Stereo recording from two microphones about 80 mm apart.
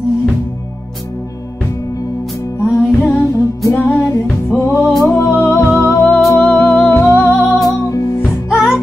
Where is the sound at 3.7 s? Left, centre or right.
Left.